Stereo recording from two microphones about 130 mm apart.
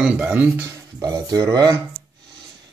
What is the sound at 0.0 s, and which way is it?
Speech, 10° right (ahead or behind).